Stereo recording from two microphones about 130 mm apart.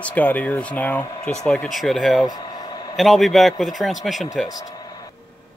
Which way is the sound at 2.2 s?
30° left (ahead or behind).